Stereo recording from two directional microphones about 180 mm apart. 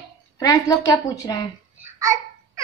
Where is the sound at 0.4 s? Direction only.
20° left (ahead or behind).